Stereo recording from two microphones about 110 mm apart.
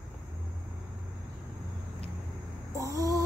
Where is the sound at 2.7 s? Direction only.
30° right (ahead or behind).